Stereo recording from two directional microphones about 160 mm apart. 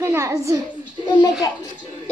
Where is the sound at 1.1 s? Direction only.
25° left (ahead or behind).